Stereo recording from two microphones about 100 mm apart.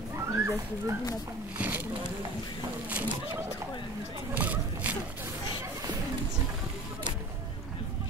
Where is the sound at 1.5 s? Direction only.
15° right (ahead or behind).